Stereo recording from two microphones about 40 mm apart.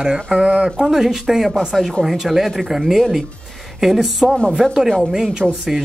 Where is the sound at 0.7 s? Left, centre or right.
Centre.